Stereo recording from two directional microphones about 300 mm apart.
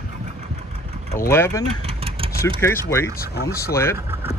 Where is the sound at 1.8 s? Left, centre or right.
Centre.